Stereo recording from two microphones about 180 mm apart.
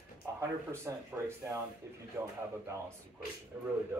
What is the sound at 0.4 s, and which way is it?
Speech, 15° right (ahead or behind).